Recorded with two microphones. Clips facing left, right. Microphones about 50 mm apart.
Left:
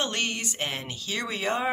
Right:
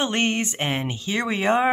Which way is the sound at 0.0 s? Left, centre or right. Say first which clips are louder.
Right 6 dB; right.